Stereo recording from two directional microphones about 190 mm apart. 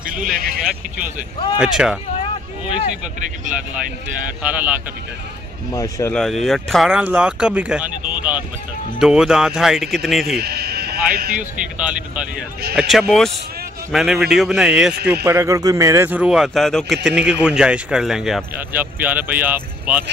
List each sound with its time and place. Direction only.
0.0 s a sound: 45° right (ahead or behind)
1.6 s speech: 5° right (ahead or behind)
4.4 s speech: 10° right (ahead or behind)
5.7 s speech: 15° left (ahead or behind)
6.1 s speech: centre (ahead or behind)
10.3 s sheep: 55° right (ahead or behind)
11.3 s speech: 5° right (ahead or behind)